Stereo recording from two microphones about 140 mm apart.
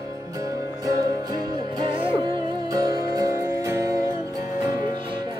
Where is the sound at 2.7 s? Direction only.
25° right (ahead or behind).